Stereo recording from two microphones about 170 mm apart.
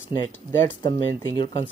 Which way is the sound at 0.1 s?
15° left (ahead or behind).